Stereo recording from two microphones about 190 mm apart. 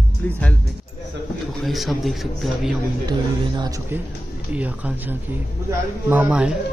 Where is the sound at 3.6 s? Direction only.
15° right (ahead or behind).